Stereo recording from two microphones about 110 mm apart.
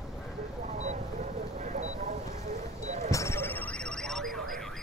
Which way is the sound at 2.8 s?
90° right.